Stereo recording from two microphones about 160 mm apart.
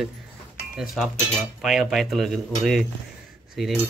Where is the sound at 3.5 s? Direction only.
Centre (ahead or behind).